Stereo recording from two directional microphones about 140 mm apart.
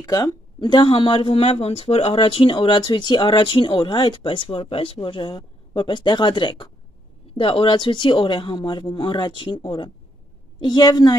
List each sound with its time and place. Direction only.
0.0 s speech: 25° left (ahead or behind)